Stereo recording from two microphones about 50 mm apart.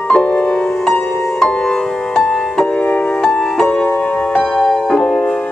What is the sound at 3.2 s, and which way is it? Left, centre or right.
Music, centre.